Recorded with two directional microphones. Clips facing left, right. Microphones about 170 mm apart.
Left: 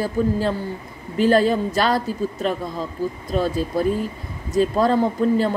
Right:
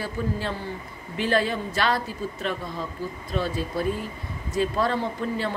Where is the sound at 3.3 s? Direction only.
40° left (ahead or behind).